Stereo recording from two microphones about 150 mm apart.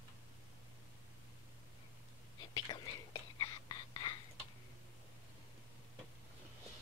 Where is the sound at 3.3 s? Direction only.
30° left (ahead or behind).